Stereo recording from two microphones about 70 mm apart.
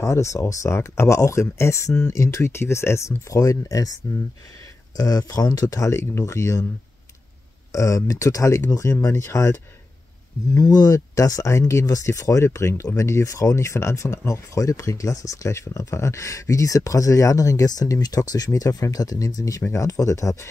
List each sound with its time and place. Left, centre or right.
0.0 s speech: left
3.3 s speech: left
7.7 s speech: left
10.5 s speech: left